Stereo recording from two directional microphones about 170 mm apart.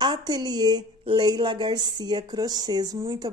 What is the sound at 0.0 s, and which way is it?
Speech, 25° right (ahead or behind).